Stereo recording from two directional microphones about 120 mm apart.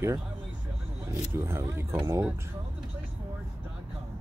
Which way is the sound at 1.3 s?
20° right (ahead or behind).